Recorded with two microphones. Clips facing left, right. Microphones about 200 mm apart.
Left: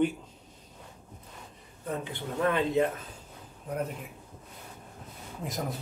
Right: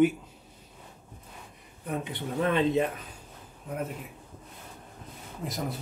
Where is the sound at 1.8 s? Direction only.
15° right (ahead or behind).